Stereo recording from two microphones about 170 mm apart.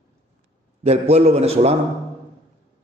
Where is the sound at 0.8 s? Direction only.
40° right (ahead or behind).